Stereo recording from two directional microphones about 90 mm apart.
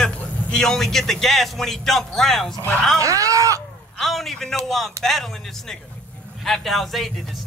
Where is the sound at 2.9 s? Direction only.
40° right (ahead or behind).